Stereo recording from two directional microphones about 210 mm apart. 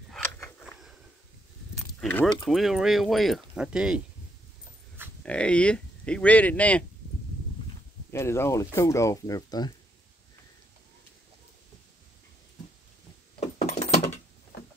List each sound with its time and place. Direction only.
0.4 s a sound: 10° left (ahead or behind)
2.0 s keys jangling: 5° left (ahead or behind)
2.5 s speech: centre (ahead or behind)
5.2 s speech: 5° left (ahead or behind)
8.1 s speech: 10° left (ahead or behind)
13.7 s a sound: 30° left (ahead or behind)